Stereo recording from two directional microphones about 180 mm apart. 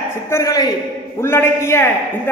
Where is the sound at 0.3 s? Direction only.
20° left (ahead or behind).